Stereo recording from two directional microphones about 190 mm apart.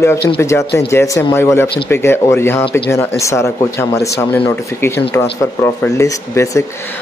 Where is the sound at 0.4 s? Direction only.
15° left (ahead or behind).